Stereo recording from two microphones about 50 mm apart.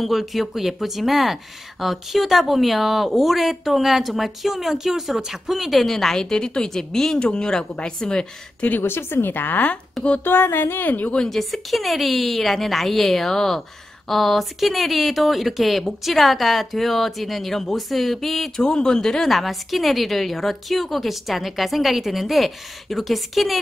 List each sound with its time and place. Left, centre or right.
0.0 s a woman's voice: centre
8.6 s a woman's voice: left
11.2 s speech: centre
18.6 s speech: centre